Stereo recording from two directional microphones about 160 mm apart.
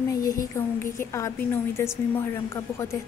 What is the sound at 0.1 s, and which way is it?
A woman's voice, 20° left (ahead or behind).